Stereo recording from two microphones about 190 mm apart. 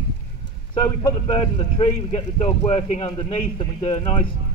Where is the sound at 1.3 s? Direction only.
30° left (ahead or behind).